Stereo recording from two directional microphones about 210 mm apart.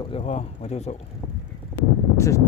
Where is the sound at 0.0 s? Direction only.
30° left (ahead or behind).